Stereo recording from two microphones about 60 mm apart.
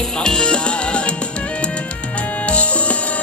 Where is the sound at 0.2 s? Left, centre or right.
Centre.